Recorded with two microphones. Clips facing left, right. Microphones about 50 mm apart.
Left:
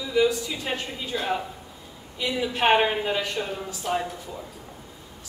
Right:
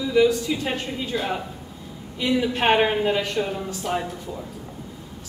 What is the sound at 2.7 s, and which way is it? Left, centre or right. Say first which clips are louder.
A woman's voice: right 2 dB; centre.